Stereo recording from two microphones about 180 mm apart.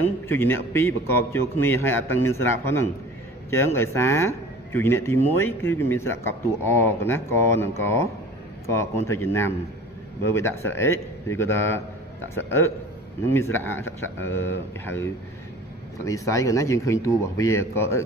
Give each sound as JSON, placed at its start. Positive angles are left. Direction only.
{"t": 0.3, "sound": "a man's voice", "side_deg": 10}
{"t": 13.3, "sound": "a man's voice", "side_deg": 15}
{"t": 16.1, "sound": "a man's voice", "side_deg": 15}